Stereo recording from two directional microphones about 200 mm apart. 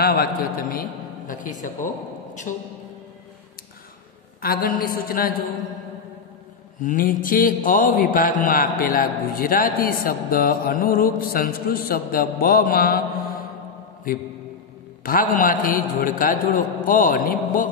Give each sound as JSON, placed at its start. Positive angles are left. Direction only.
{"t": 0.0, "sound": "a man's voice", "side_deg": 50}
{"t": 2.5, "sound": "music", "side_deg": 40}
{"t": 4.4, "sound": "a man's voice", "side_deg": 45}
{"t": 6.8, "sound": "a man's voice", "side_deg": 40}
{"t": 15.0, "sound": "a man's voice", "side_deg": 45}